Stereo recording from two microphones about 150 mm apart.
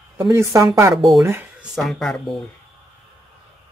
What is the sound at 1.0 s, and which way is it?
Speech, centre (ahead or behind).